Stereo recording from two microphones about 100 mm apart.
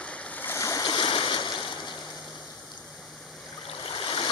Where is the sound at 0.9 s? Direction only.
55° left (ahead or behind).